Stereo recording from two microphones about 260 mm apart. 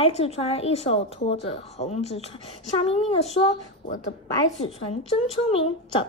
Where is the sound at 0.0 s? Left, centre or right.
Left.